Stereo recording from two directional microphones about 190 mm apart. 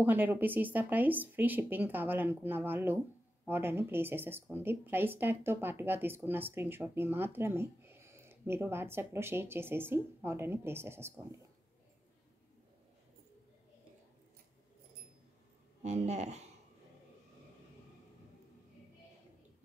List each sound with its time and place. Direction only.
0.0 s speech: 10° right (ahead or behind)
15.8 s speech: 35° right (ahead or behind)